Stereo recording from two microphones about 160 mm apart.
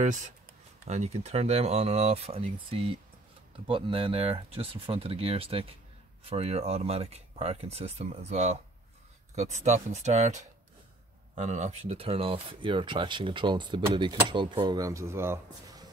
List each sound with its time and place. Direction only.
0.0 s speech: 50° right (ahead or behind); by 15.9 s 20° right (ahead or behind)